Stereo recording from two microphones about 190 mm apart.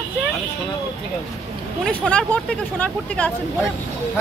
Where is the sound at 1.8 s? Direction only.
5° left (ahead or behind).